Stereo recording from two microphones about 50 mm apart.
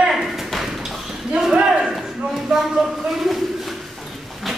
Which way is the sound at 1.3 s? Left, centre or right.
Centre.